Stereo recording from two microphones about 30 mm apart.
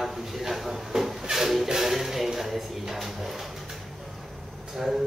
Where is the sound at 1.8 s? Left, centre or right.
Centre.